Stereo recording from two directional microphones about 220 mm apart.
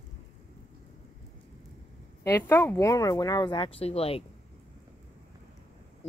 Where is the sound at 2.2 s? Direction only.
10° left (ahead or behind); by 4.2 s 25° left (ahead or behind).